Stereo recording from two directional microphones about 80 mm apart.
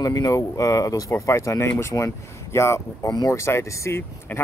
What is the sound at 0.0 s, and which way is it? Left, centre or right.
Speech, left.